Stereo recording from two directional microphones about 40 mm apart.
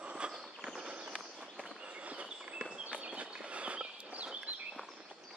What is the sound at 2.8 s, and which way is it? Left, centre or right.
Walk, right.